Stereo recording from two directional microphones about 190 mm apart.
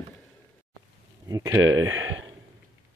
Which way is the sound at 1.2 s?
15° right (ahead or behind).